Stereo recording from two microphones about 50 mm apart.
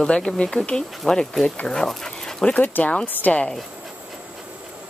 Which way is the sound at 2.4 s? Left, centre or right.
Left.